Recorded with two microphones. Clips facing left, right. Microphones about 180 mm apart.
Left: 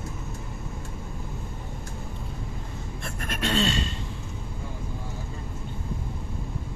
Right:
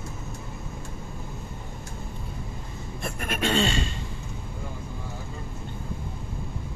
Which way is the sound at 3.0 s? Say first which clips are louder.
Right 3 dB; 5° right (ahead or behind).